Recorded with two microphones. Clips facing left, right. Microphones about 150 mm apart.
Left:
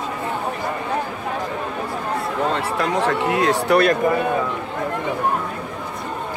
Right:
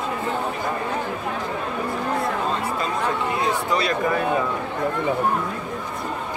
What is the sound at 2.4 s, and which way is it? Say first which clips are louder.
Speech: left 3 dB; 75° left (ahead or behind).